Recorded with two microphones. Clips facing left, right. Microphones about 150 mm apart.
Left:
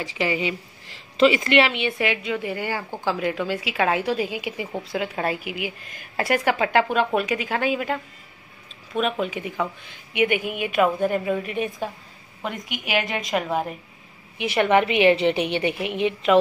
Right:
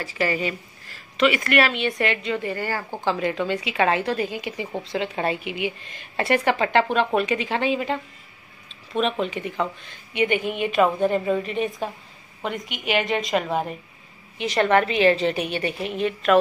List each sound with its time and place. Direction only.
0.0 s a woman's voice: 15° left (ahead or behind)
14.4 s a woman's voice: 15° left (ahead or behind)